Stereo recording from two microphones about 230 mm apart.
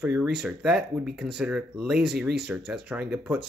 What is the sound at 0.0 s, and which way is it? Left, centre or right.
Speech, centre.